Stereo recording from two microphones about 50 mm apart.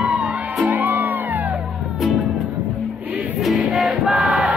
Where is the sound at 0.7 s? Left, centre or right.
Right.